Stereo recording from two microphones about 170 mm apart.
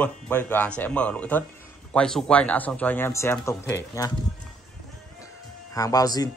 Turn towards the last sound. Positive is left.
turn(degrees=20)  # may be behind; listen again after turning